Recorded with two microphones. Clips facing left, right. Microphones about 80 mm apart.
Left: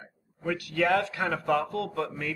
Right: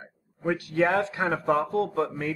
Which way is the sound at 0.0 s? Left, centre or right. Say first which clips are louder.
Right 4 dB; right.